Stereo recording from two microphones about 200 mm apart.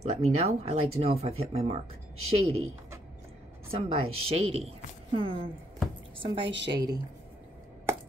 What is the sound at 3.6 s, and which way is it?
Speech, 30° right (ahead or behind).